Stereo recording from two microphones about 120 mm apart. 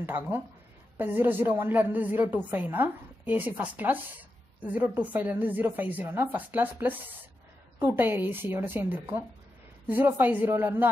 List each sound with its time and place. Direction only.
0.0 s a woman's voice: 15° right (ahead or behind)